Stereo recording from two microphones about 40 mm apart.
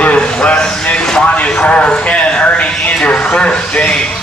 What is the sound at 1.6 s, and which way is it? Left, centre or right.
Speech, left.